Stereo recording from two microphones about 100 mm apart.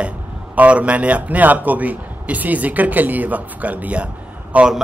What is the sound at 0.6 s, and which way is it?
A man's voice, 15° right (ahead or behind).